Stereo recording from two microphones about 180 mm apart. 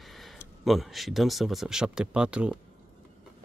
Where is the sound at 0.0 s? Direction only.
Centre (ahead or behind).